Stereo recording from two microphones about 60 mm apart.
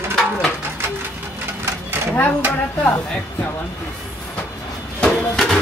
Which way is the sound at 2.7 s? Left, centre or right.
Left.